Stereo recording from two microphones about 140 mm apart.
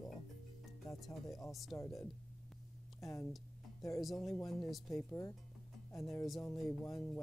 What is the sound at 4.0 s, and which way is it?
Speech, centre (ahead or behind).